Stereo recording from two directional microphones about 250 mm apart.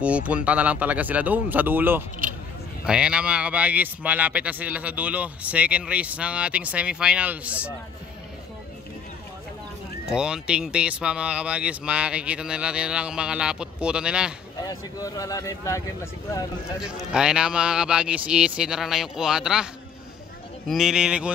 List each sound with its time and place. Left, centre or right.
0.0 s speech: centre
10.0 s speech: centre
14.6 s speech: centre
16.8 s speech: centre